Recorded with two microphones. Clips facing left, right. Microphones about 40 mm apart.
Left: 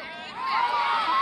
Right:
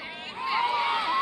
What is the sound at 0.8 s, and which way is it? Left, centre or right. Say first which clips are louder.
Crowd: left 2 dB; left.